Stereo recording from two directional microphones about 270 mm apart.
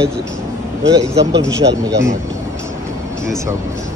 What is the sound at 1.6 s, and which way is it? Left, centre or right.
Speech, right.